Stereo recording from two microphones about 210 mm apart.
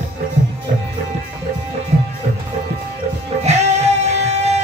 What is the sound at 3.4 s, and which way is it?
Music, 30° right (ahead or behind).